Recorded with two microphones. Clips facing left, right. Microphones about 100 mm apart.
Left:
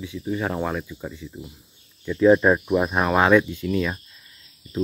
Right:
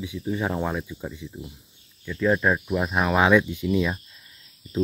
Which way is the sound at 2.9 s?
Centre (ahead or behind).